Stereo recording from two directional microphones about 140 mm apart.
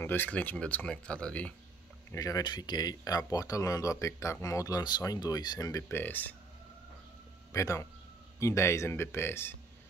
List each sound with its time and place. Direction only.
0.0 s speech: 15° left (ahead or behind)
2.1 s speech: 25° left (ahead or behind)
5.9 s speech: 15° left (ahead or behind)
7.5 s speech: 20° left (ahead or behind)